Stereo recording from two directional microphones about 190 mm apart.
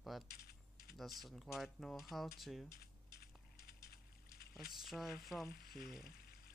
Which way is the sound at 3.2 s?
55° left (ahead or behind).